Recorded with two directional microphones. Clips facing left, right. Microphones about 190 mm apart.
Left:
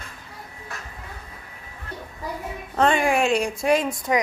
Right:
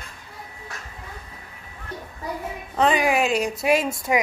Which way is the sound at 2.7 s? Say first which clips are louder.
Even; 5° right (ahead or behind).